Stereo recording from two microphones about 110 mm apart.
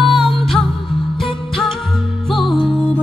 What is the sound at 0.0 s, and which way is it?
Music, centre (ahead or behind).